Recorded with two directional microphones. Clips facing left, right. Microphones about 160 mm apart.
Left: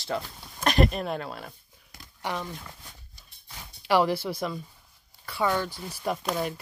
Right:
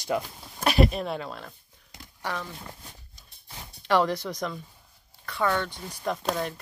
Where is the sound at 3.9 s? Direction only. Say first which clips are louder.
Left 1 dB; 10° left (ahead or behind).